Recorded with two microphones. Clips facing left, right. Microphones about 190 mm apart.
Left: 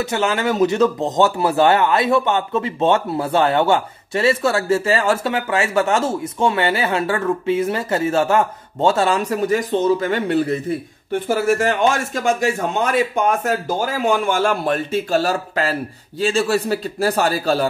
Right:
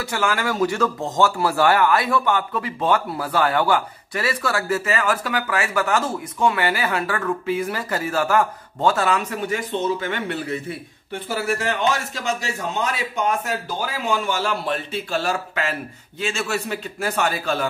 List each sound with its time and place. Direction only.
0.0 s speech: 20° left (ahead or behind)
11.1 s speech: 45° left (ahead or behind)